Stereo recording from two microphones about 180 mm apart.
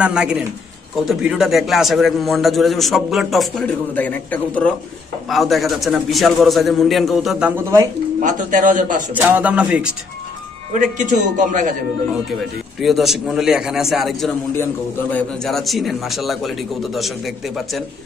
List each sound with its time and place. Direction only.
0.0 s a man's voice: 5° right (ahead or behind)
8.2 s a man's voice: 45° right (ahead or behind)
9.1 s speech: 10° right (ahead or behind)
10.7 s a man's voice: 45° right (ahead or behind)
12.8 s a man's voice: centre (ahead or behind)